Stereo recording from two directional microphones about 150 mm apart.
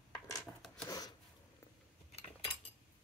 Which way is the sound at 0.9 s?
25° left (ahead or behind).